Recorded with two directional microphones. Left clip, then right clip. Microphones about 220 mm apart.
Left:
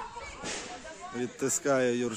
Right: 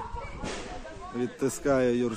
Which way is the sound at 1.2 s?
5° left (ahead or behind).